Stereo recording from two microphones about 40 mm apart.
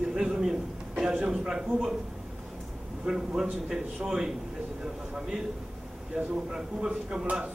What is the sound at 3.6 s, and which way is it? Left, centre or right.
Speech, centre.